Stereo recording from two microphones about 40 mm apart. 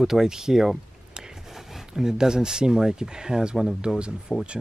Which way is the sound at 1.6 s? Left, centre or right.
Centre.